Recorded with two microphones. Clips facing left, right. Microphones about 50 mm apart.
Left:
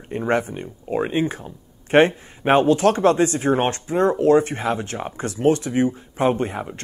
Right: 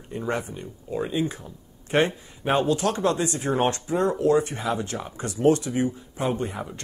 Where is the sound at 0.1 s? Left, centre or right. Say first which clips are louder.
Left 7 dB; left.